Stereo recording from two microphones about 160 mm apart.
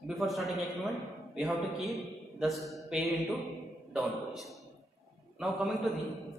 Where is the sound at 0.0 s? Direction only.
Centre (ahead or behind).